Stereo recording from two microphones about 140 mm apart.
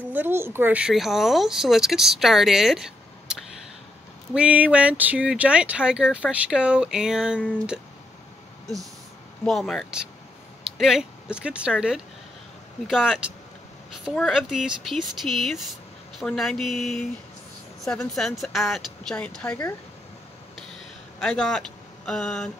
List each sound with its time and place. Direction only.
0.1 s speech: 15° right (ahead or behind)
4.3 s speech: 10° right (ahead or behind)
9.4 s speech: 5° left (ahead or behind)
21.2 s speech: 5° left (ahead or behind)